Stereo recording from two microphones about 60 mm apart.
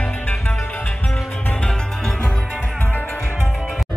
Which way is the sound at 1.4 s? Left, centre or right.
Centre.